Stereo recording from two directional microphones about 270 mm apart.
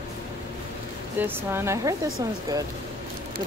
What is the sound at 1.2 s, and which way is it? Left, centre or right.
Speech, centre.